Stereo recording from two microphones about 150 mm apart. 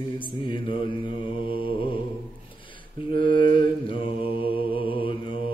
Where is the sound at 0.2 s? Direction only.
35° left (ahead or behind).